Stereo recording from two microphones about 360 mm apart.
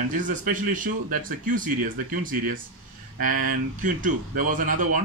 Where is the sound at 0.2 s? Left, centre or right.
Right.